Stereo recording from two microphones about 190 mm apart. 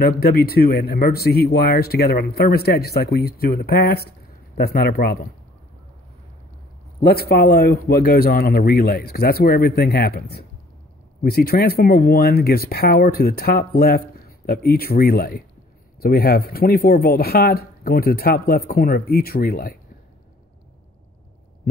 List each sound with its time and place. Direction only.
0.0 s speech: 55° left (ahead or behind)
7.0 s speech: 55° left (ahead or behind)